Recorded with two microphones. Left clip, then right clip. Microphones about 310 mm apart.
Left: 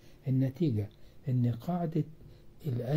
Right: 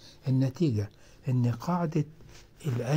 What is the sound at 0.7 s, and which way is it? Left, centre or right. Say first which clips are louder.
Speech: right 3 dB; centre.